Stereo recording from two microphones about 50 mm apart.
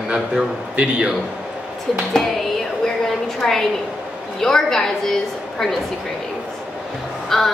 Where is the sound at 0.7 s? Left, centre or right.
Centre.